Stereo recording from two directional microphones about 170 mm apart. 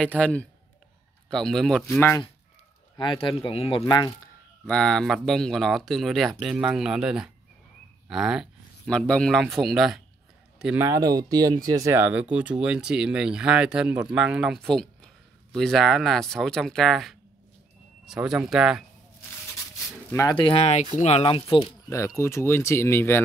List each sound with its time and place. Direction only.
0.2 s speech: 5° left (ahead or behind)
2.0 s speech: 10° left (ahead or behind)
3.0 s speech: 30° left (ahead or behind)
4.6 s speech: 5° left (ahead or behind)
10.9 s speech: 20° right (ahead or behind); by 18.9 s 5° right (ahead or behind)
20.1 s speech: 15° left (ahead or behind)
20.3 s speech: 30° left (ahead or behind)
21.8 s speech: 15° left (ahead or behind)